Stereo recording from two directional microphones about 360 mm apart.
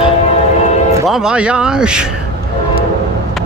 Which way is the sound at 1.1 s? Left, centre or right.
Centre.